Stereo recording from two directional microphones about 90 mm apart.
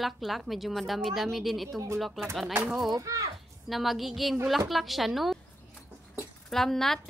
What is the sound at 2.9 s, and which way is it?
Speech, 40° right (ahead or behind).